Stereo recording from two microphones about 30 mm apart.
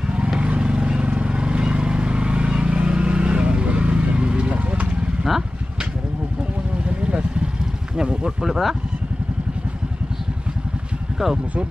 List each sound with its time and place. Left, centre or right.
0.0 s vehicle: right
5.3 s speech: centre
6.8 s vehicle: right
7.9 s a sound: right
8.5 s speech: centre